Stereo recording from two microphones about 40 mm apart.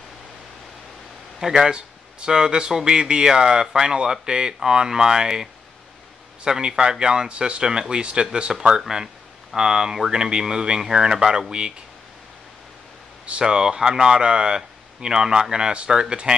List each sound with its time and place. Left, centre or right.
1.4 s speech: centre
13.3 s speech: right